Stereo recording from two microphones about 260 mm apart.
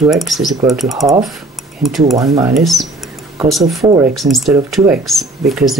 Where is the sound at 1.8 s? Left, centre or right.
Centre.